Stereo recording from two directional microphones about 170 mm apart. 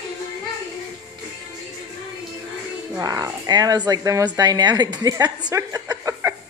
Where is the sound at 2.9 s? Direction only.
20° right (ahead or behind).